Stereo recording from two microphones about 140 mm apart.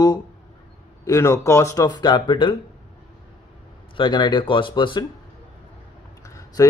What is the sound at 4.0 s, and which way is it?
Speech, 35° left (ahead or behind).